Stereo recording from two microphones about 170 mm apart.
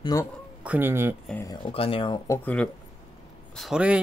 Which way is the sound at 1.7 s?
35° left (ahead or behind).